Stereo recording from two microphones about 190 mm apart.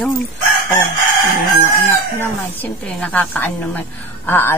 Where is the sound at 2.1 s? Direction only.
10° left (ahead or behind).